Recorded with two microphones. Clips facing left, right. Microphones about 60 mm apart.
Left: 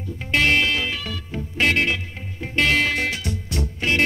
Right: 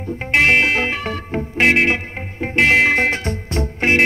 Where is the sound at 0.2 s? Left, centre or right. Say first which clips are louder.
Right 5 dB; right.